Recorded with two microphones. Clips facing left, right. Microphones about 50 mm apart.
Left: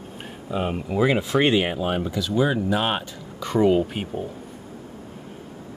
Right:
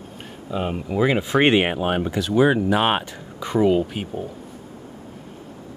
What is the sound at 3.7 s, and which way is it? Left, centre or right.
Speech, centre.